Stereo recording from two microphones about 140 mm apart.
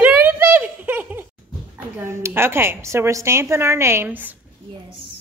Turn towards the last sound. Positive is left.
turn(degrees=-10)  # may be behind; listen again after turning